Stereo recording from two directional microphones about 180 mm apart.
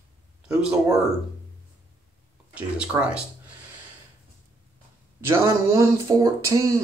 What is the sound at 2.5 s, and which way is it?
Speech, 5° right (ahead or behind).